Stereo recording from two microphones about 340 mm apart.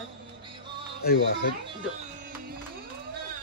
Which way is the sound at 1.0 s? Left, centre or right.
Left.